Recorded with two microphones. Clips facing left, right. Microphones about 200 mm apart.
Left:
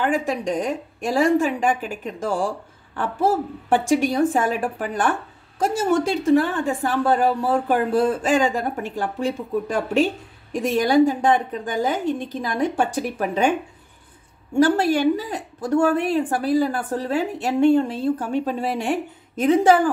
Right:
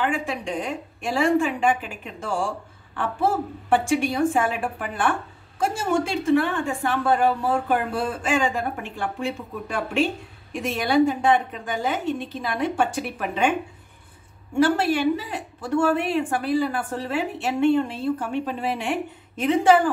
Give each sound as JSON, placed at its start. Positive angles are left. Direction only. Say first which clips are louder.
{"t": 0.0, "sound": "a woman's voice", "louder": "left 4 dB", "side_deg": 40}
{"t": 3.7, "sound": "a woman's voice", "louder": "left 2 dB", "side_deg": 40}
{"t": 14.5, "sound": "a woman's voice", "louder": "left 3 dB", "side_deg": 40}